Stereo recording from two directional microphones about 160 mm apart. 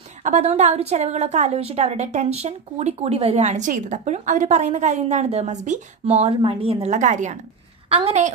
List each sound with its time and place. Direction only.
0.2 s a woman's voice: 45° right (ahead or behind)